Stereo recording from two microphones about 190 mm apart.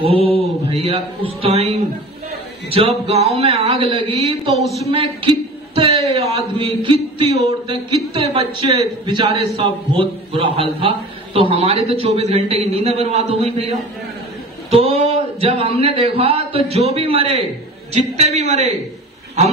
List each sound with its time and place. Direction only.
0.0 s a man's voice: 30° right (ahead or behind)
3.1 s a man's voice: 35° right (ahead or behind)
4.6 s speech: centre (ahead or behind)
4.9 s a woman's voice: 30° right (ahead or behind)